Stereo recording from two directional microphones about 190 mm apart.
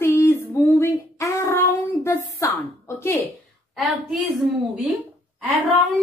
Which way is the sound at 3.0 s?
15° left (ahead or behind).